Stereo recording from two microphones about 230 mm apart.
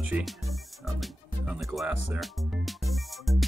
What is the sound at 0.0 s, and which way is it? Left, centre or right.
Music, centre.